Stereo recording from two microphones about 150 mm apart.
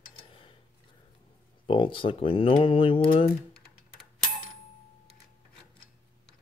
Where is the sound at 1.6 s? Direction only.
35° left (ahead or behind).